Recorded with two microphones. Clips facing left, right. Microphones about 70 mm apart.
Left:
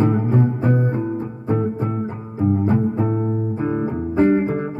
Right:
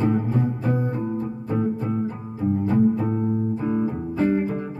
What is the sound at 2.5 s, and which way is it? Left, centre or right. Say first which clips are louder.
Music: left 1 dB; left.